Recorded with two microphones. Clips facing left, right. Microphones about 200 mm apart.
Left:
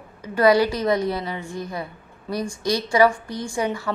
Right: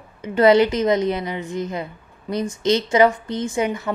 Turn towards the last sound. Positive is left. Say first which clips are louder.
# right 2 dB
turn(degrees=-20)  # may be behind; listen again after turning